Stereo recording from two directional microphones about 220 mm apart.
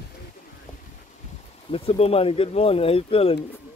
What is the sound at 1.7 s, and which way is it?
Speech, 25° left (ahead or behind).